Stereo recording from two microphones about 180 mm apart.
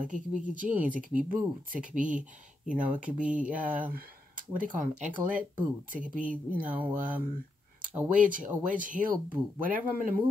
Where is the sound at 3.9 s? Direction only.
50° right (ahead or behind).